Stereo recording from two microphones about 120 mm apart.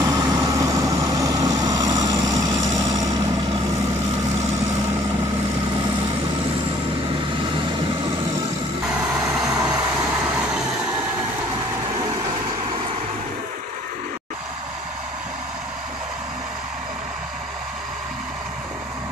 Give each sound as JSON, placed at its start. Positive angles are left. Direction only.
{"t": 0.0, "sound": "vehicle", "side_deg": -35}
{"t": 9.5, "sound": "vehicle", "side_deg": -30}